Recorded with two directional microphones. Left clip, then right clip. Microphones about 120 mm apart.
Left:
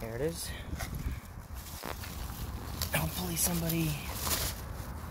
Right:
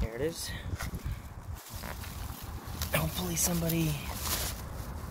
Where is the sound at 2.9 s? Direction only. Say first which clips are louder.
Right 3 dB; 25° right (ahead or behind).